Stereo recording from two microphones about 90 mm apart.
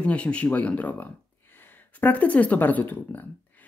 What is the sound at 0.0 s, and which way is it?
Speech, 15° left (ahead or behind).